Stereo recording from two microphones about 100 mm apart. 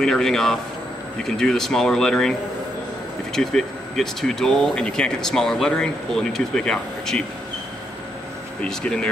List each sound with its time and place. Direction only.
0.0 s speech: 5° left (ahead or behind)
3.3 s speech: 5° left (ahead or behind)
8.6 s speech: 10° left (ahead or behind)